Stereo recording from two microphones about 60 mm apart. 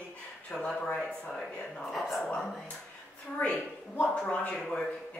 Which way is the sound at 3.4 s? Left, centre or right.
Left.